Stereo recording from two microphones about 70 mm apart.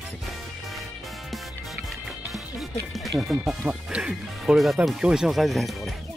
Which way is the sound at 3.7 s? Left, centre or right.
Centre.